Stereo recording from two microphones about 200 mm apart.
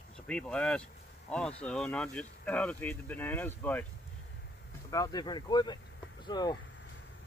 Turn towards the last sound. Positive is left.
turn(degrees=20)  # may be behind; listen again after turning